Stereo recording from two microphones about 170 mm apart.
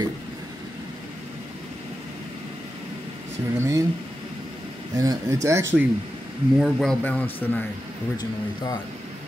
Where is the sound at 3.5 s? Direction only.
20° right (ahead or behind).